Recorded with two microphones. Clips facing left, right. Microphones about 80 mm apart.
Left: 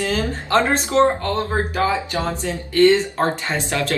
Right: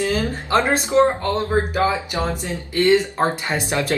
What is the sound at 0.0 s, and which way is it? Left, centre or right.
Speech, right.